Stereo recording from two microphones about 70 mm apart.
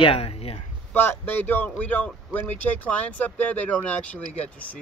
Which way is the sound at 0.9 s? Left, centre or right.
Left.